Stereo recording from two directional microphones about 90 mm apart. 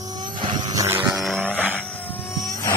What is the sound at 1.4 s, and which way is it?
Vehicle, 20° left (ahead or behind).